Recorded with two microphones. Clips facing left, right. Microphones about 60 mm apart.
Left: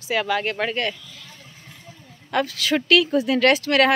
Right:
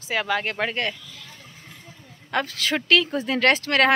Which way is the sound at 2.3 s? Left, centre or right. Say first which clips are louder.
Left 3 dB; right.